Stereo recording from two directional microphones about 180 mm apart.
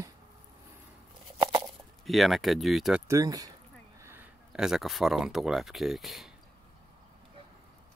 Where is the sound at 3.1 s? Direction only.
20° right (ahead or behind); by 6.3 s centre (ahead or behind).